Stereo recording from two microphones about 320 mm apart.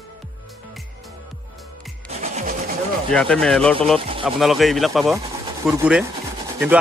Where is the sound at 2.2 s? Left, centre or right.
Right.